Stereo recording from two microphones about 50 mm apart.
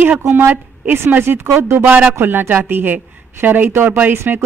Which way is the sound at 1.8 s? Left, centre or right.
Right.